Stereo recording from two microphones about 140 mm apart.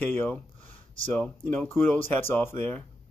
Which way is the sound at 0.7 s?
40° left (ahead or behind).